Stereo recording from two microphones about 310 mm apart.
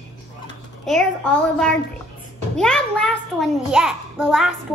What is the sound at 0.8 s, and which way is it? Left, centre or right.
A child's voice, centre.